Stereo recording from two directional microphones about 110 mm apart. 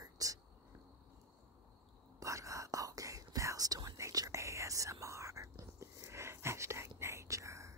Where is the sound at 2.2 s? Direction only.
30° right (ahead or behind).